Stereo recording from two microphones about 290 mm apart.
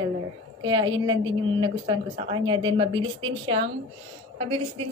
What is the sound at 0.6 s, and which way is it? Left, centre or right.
A woman's voice, centre.